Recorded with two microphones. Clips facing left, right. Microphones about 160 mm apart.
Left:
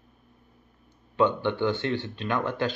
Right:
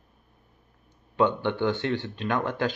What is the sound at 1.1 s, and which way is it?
Speech, 15° right (ahead or behind).